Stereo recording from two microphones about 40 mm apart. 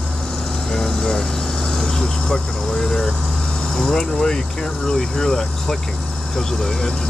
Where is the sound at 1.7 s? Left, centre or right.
Centre.